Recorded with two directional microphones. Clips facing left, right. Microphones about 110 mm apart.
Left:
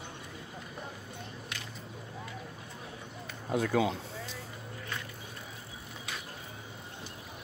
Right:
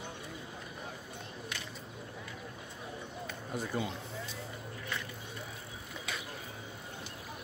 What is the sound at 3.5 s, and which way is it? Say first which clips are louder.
Speech: left 8 dB; 90° left.